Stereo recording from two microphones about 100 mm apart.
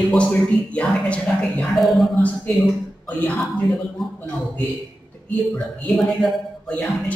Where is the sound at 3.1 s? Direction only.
15° left (ahead or behind).